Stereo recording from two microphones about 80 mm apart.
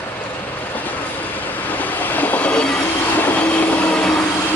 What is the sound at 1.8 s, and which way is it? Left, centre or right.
Train, left.